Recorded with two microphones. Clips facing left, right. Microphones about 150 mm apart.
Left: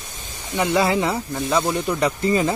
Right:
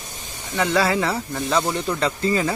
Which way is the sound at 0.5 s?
15° left (ahead or behind).